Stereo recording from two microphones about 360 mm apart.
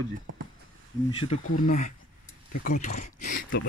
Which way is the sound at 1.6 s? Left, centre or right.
Left.